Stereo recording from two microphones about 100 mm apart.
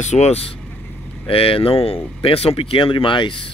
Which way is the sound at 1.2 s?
70° left (ahead or behind).